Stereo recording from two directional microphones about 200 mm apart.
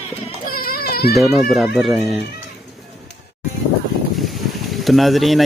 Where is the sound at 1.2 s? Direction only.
Centre (ahead or behind).